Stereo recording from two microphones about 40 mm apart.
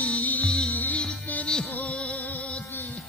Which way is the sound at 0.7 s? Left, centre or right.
Left.